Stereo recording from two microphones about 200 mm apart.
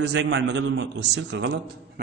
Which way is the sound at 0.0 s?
65° right (ahead or behind).